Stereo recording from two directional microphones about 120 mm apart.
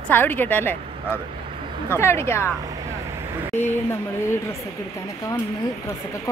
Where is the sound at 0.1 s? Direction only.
15° left (ahead or behind).